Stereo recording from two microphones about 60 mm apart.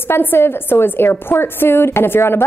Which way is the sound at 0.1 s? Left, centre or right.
Left.